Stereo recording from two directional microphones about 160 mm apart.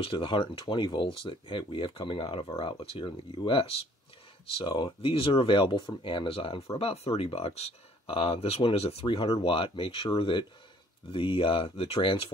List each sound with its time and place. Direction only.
0.0 s speech: 35° left (ahead or behind)